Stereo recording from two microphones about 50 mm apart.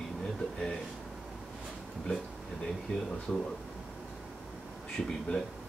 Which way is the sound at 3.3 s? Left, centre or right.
Centre.